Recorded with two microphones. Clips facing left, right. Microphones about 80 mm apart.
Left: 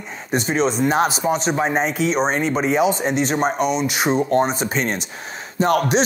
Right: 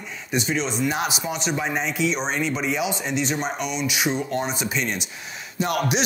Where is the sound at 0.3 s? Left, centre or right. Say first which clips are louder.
Left 5 dB; left.